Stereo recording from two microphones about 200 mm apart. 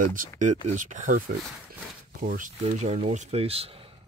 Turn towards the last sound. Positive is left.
turn(degrees=-30)  # may be behind; listen again after turning